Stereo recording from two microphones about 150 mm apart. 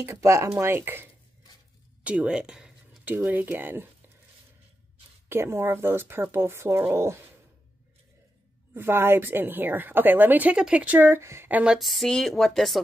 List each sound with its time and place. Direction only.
0.0 s a woman's voice: 20° right (ahead or behind)
2.0 s a sound: 5° right (ahead or behind)
3.2 s a woman's voice: 10° right (ahead or behind)
5.3 s a woman's voice: 15° right (ahead or behind)
8.7 s a woman's voice: 15° right (ahead or behind); by 12.8 s centre (ahead or behind)